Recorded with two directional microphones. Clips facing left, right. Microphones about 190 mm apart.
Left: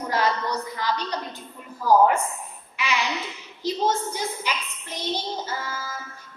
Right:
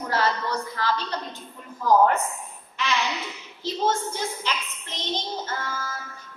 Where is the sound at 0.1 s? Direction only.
15° left (ahead or behind).